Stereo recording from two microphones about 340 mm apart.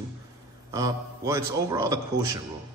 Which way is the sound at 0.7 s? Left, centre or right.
Centre.